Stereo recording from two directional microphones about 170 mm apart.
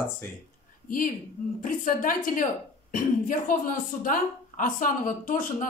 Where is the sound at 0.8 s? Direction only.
55° left (ahead or behind).